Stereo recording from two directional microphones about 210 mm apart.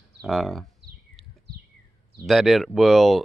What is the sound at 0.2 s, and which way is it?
Speech, centre (ahead or behind).